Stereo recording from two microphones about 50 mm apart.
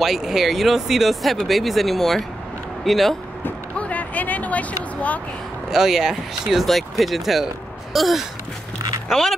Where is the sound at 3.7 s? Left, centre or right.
Left.